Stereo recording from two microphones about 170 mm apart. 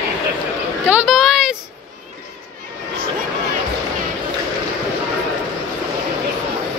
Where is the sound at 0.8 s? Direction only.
5° right (ahead or behind).